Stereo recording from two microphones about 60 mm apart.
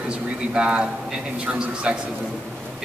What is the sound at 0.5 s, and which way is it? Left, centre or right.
Speech, centre.